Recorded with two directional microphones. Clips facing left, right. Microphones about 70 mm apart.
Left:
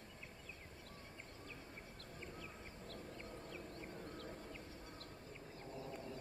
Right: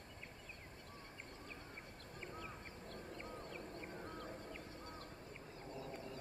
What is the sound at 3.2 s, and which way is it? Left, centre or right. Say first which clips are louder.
Fowl: right 2 dB; right.